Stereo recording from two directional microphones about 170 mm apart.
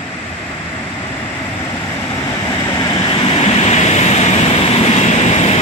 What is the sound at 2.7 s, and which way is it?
Vehicle, 25° left (ahead or behind).